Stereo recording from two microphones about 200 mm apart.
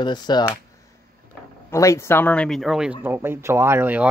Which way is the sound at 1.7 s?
15° left (ahead or behind).